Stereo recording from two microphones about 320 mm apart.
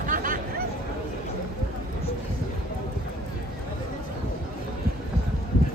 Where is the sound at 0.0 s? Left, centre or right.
Right.